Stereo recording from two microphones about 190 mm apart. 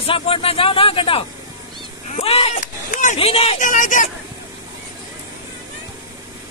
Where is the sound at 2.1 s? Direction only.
30° left (ahead or behind).